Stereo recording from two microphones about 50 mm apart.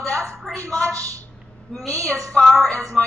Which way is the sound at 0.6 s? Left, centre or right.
Left.